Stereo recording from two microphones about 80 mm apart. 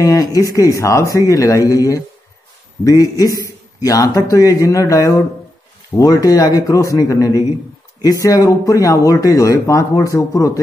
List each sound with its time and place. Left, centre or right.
0.0 s speech: left